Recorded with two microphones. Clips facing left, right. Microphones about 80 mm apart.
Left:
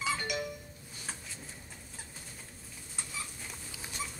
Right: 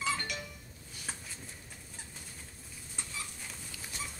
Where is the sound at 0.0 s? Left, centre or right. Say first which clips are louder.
Left 2 dB; centre.